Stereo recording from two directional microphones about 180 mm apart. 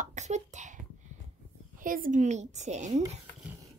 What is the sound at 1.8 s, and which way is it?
A woman's voice, 50° right (ahead or behind).